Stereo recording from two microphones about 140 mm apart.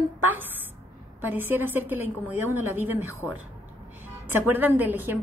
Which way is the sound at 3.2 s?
35° left (ahead or behind).